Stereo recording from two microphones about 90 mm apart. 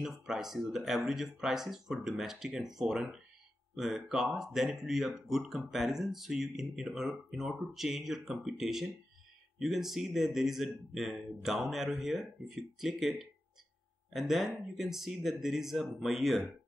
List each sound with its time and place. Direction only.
0.0 s speech: 5° right (ahead or behind)